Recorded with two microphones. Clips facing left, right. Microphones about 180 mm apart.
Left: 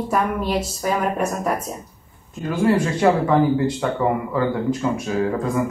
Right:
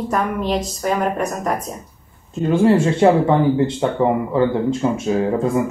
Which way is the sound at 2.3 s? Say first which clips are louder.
Right 4 dB; 25° right (ahead or behind).